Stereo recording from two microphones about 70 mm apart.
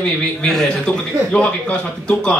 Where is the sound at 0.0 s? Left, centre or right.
Centre.